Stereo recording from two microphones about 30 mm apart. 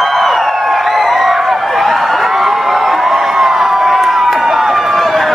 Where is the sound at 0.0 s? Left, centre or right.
Centre.